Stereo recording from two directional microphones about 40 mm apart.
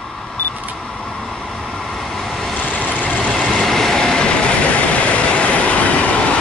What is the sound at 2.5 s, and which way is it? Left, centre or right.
Vehicle, left.